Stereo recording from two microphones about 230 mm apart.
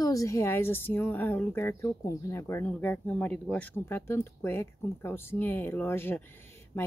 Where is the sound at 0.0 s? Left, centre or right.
Centre.